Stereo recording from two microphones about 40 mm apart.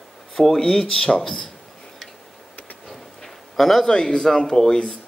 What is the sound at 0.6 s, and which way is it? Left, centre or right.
Speech, centre.